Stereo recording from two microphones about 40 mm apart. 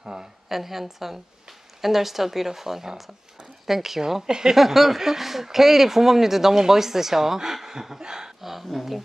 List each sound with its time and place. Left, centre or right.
0.0 s a woman's voice: centre
0.5 s a woman's voice: centre
8.5 s a woman's voice: centre